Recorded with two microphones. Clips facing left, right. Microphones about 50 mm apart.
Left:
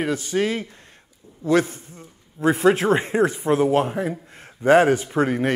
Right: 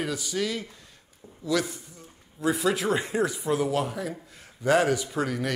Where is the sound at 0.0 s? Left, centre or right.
Left.